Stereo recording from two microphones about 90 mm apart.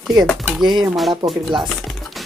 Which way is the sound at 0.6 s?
60° right (ahead or behind).